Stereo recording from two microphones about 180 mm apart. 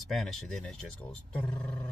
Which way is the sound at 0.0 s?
Centre (ahead or behind).